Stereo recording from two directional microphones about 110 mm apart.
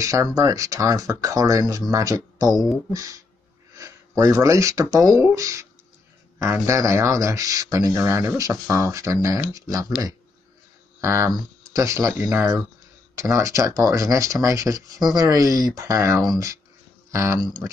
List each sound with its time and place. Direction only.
0.0 s speech: 30° right (ahead or behind)
2.5 s speech: centre (ahead or behind)
2.9 s speech: 30° right (ahead or behind)
11.0 s speech: 25° right (ahead or behind)
12.1 s speech: 20° right (ahead or behind)
17.4 s speech: 40° right (ahead or behind)